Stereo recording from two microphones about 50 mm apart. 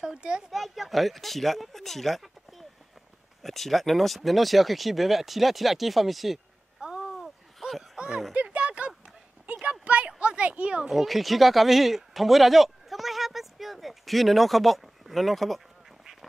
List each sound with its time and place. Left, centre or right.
0.0 s speech: centre
0.5 s speech: centre
6.8 s a sound: centre
7.1 s a sound: centre
8.1 s speech: centre
8.4 s clip-clop: right
10.9 s speech: centre